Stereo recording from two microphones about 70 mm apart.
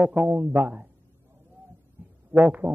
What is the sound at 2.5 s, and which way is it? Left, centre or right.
Speech, right.